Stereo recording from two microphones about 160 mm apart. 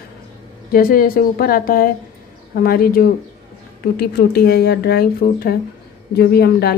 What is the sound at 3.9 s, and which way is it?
A woman's voice, 80° left.